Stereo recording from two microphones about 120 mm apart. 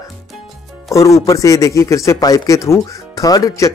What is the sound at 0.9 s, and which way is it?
A man's voice, 25° left (ahead or behind).